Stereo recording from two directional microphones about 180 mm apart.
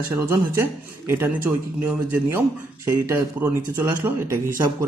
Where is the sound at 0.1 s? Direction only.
15° right (ahead or behind).